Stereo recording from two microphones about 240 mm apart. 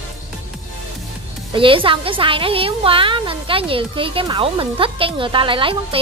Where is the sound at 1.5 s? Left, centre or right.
Right.